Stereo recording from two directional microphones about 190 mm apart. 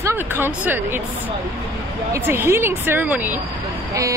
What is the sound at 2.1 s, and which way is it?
A woman's voice, 10° right (ahead or behind).